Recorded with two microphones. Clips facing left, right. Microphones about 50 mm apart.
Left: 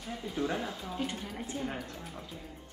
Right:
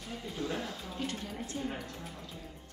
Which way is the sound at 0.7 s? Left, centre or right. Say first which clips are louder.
Left 2 dB; centre.